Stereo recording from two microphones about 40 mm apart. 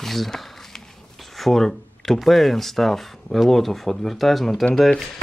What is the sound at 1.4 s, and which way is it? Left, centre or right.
Speech, centre.